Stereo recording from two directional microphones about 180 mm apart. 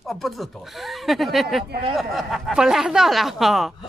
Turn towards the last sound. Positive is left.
turn(degrees=0)  # may be behind; listen again after turning